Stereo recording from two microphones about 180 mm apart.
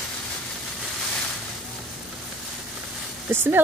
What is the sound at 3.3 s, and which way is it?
Speech, 10° right (ahead or behind).